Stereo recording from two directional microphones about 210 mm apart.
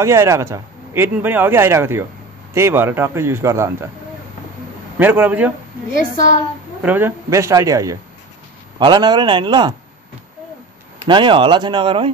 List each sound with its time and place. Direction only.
0.0 s a man's voice: 15° right (ahead or behind)
4.9 s a man's voice: 10° right (ahead or behind)
5.9 s a woman's voice: 40° left (ahead or behind)
6.8 s a man's voice: 10° right (ahead or behind)
11.1 s a man's voice: 25° right (ahead or behind)